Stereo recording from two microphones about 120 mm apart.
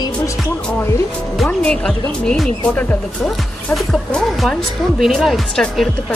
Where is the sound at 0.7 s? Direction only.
15° left (ahead or behind).